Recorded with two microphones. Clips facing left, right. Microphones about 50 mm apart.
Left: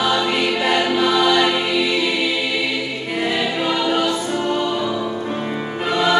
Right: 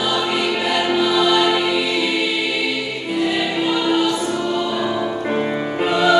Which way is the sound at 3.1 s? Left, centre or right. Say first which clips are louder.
Right 1 dB; left.